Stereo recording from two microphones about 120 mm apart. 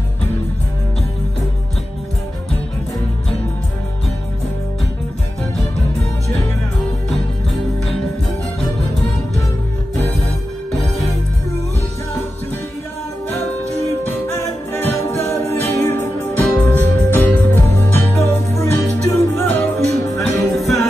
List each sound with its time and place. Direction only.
14.0 s music: 20° left (ahead or behind)
20.2 s music: centre (ahead or behind)